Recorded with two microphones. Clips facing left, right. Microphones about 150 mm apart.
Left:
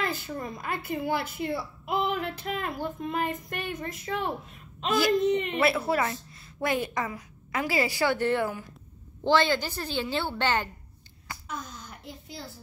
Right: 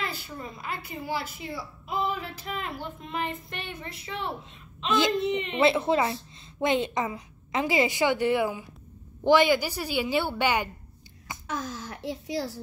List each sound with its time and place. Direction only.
0.0 s a woman's voice: 50° left (ahead or behind)
5.6 s a woman's voice: 25° right (ahead or behind)
11.4 s speech: 90° right